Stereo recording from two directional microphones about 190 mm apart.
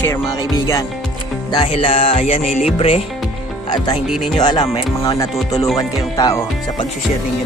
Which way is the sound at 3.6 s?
20° left (ahead or behind).